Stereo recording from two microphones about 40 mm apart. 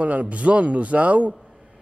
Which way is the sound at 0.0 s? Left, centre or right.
Right.